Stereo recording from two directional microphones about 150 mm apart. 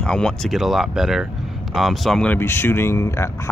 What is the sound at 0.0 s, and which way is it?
Speech, 5° left (ahead or behind).